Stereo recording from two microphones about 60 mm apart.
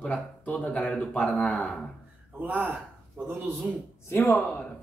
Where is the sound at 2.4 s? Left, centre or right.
Right.